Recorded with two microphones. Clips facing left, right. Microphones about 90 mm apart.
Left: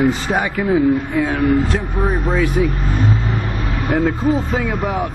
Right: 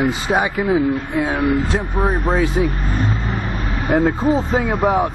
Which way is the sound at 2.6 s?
30° right (ahead or behind).